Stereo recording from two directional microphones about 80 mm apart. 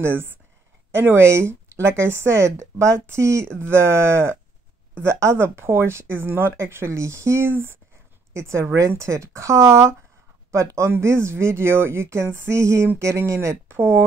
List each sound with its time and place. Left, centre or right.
0.0 s speech: right